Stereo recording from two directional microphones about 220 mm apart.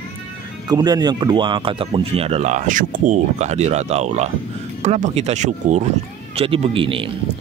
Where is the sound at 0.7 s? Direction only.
20° right (ahead or behind).